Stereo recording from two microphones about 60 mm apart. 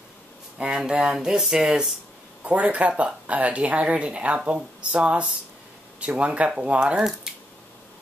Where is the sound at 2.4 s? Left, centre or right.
Right.